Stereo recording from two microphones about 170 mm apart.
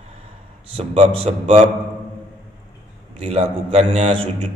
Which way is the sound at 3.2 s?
35° right (ahead or behind).